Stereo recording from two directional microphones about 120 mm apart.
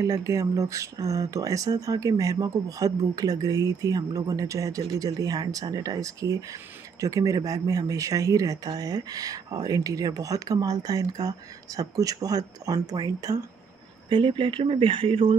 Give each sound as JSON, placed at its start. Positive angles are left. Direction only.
{"t": 0.0, "sound": "speech", "side_deg": -25}
{"t": 14.0, "sound": "speech", "side_deg": -45}